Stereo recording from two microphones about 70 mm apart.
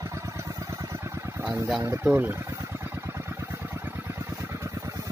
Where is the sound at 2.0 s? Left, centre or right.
Right.